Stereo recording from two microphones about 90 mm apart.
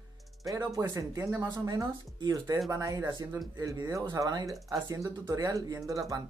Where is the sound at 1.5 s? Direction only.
45° right (ahead or behind).